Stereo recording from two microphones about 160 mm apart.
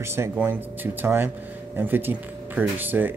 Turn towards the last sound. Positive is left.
turn(degrees=-10)  # may be behind; listen again after turning